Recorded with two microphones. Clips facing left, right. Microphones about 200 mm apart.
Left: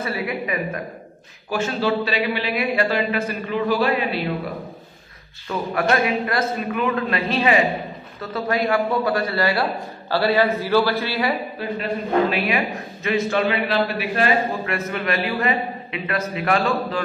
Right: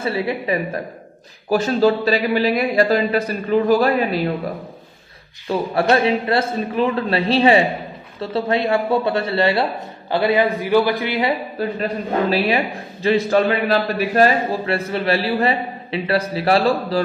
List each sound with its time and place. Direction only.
0.0 s a man's voice: 30° right (ahead or behind)
5.5 s a man's voice: 30° right (ahead or behind)
11.6 s a man's voice: 40° right (ahead or behind)